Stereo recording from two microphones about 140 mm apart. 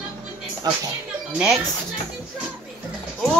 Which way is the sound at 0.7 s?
25° right (ahead or behind).